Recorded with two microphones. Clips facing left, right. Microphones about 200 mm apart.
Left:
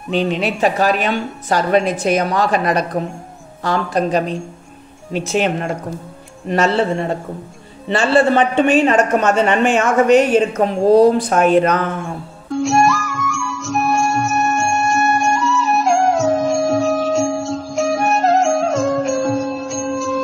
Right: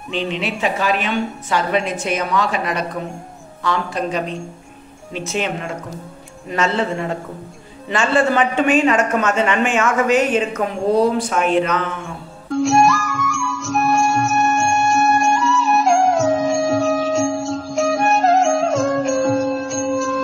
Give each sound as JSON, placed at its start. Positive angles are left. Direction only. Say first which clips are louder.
{"t": 0.1, "sound": "a woman's voice", "louder": "left 5 dB", "side_deg": 40}
{"t": 12.4, "sound": "music", "louder": "even", "side_deg": 0}